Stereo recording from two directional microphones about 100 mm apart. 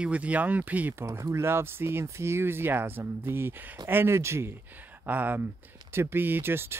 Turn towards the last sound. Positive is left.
turn(degrees=-25)  # may be behind; listen again after turning